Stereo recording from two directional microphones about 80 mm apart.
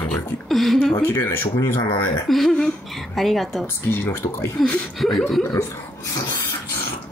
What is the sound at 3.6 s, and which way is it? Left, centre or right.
Speech, left.